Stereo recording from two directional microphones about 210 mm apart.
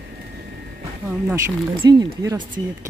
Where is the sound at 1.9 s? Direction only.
20° right (ahead or behind).